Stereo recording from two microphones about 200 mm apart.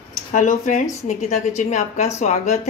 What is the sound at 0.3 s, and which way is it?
A woman's voice, 40° left (ahead or behind).